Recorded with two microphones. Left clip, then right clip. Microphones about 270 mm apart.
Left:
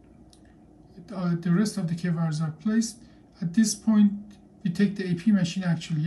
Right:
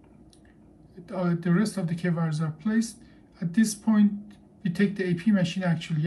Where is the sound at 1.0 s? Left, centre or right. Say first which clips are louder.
Right 3 dB; centre.